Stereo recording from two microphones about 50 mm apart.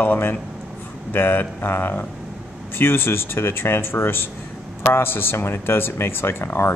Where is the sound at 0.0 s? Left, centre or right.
Left.